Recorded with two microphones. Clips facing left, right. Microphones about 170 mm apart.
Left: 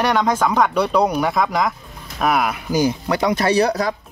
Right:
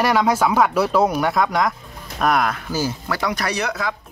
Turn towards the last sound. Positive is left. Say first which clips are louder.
# left 7 dB
turn(degrees=35)  # may be behind; listen again after turning